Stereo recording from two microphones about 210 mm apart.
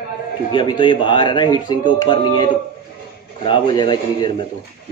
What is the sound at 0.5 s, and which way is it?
Speech, 20° left (ahead or behind).